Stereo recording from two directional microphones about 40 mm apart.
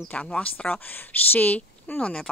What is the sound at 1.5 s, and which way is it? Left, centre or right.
Speech, left.